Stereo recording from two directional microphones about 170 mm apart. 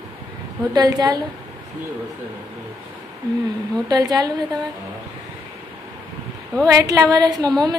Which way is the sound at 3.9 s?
25° right (ahead or behind).